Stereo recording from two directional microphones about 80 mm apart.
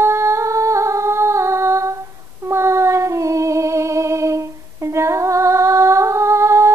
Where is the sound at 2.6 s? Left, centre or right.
Right.